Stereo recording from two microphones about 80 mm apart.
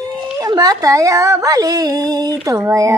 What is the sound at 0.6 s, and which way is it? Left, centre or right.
Speech, right.